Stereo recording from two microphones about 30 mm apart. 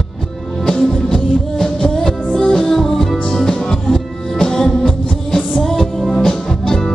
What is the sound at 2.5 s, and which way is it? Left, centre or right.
Music, centre.